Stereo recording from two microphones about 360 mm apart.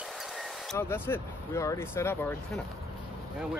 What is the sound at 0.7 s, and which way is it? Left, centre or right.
Speech, centre.